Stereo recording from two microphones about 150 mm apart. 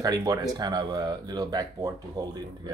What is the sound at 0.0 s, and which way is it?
Speech, 25° right (ahead or behind).